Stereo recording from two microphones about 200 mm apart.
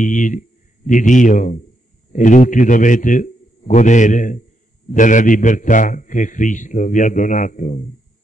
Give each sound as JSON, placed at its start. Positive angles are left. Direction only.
{"t": 0.0, "sound": "a man's voice", "side_deg": 40}